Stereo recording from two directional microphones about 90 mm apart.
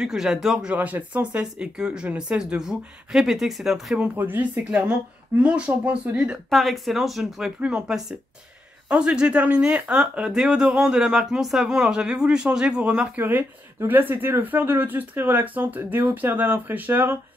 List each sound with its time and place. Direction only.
0.0 s speech: 5° right (ahead or behind)
0.7 s speech: 20° right (ahead or behind)
4.2 s speech: 20° right (ahead or behind)
6.5 s speech: centre (ahead or behind); by 17.2 s 20° right (ahead or behind)